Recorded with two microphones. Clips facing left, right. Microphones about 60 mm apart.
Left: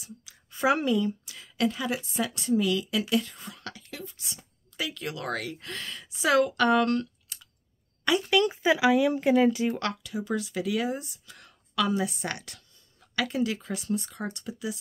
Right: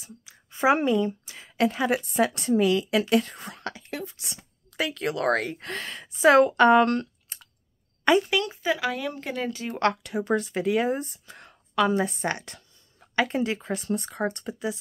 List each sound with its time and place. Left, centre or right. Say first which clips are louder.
0.0 s a woman's voice: even; right
3.6 s a sound: right 8 dB; right
4.0 s a woman's voice: right 4 dB; right
8.5 s speech: left 4 dB; centre
9.8 s speech: right 7 dB; right